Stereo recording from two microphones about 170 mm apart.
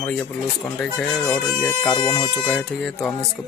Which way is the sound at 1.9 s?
25° left (ahead or behind).